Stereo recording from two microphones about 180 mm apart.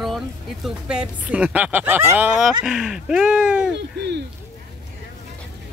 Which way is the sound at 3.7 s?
70° right (ahead or behind).